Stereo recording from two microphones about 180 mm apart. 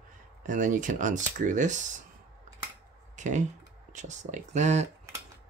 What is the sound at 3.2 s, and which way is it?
Speech, 45° right (ahead or behind).